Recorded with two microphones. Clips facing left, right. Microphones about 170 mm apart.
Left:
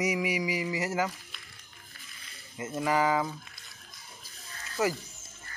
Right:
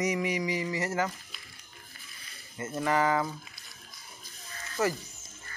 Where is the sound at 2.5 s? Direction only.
10° left (ahead or behind).